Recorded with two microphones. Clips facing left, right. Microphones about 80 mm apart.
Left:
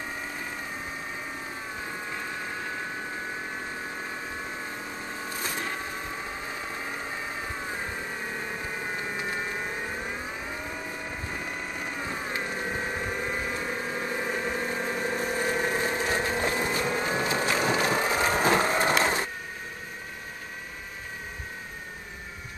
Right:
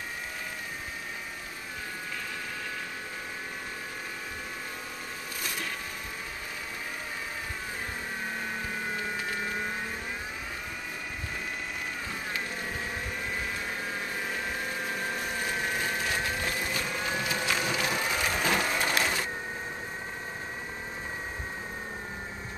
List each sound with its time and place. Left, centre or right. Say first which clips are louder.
5.4 s vehicle: left 2 dB; left
15.3 s vehicle: left 5 dB; left